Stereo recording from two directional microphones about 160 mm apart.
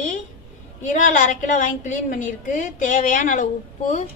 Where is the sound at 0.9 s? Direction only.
55° left (ahead or behind).